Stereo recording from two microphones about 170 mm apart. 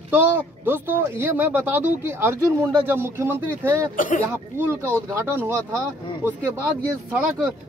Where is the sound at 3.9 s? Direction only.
50° left (ahead or behind).